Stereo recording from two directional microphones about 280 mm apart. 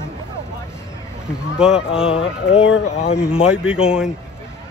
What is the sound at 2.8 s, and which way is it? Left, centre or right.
Speech, left.